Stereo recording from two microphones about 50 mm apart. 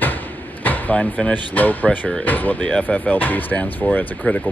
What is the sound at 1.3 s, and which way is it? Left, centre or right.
Speech, left.